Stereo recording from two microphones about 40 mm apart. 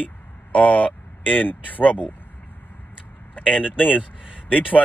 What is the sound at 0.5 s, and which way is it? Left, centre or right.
Speech, left.